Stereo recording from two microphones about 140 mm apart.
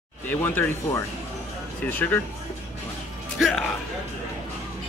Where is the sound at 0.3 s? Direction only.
15° left (ahead or behind).